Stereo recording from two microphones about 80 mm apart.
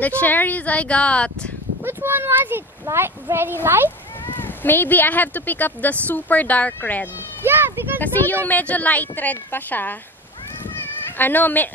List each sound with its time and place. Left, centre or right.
0.0 s speech: left
1.8 s speech: right
4.3 s a woman's voice: left
7.4 s a sound: right
8.0 s a woman's voice: left
10.6 s cat: left